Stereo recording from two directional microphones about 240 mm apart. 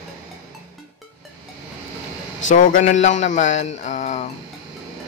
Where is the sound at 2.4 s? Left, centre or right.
Left.